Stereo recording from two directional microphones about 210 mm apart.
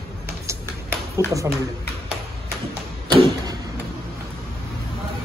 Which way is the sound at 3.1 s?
20° right (ahead or behind).